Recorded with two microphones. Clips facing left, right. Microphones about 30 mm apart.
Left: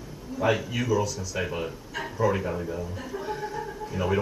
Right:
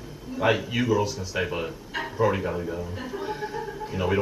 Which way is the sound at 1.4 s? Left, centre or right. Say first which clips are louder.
Right 2 dB; centre.